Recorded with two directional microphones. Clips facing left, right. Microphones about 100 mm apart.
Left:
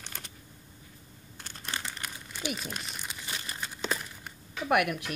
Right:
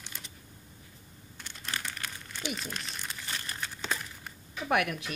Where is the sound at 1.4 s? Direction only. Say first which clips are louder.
Left 1 dB; 40° left (ahead or behind).